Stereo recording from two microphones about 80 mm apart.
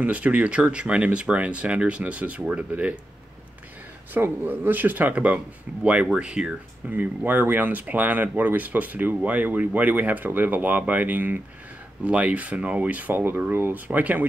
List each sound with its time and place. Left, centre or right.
0.0 s speech: centre
4.1 s speech: right